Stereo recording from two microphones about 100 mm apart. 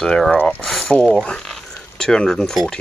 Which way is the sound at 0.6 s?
Centre (ahead or behind).